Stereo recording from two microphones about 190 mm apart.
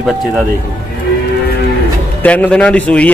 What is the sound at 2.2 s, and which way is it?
Speech, 5° left (ahead or behind).